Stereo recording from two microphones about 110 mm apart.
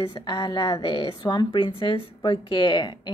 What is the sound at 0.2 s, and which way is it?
A woman's voice, 40° left (ahead or behind).